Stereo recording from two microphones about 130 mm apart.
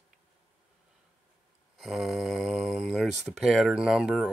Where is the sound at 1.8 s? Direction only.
Centre (ahead or behind).